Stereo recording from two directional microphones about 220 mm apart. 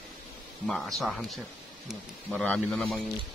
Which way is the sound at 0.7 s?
Centre (ahead or behind).